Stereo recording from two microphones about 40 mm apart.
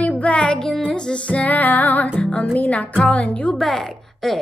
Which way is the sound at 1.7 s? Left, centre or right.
Left.